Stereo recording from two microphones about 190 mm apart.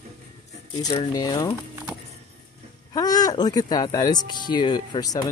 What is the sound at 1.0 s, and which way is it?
Speech, 20° left (ahead or behind).